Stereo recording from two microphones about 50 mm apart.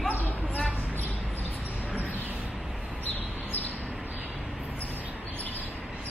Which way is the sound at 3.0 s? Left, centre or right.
Left.